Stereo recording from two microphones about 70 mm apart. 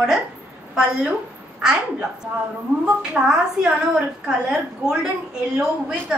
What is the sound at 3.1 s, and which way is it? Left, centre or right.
A woman's voice, centre.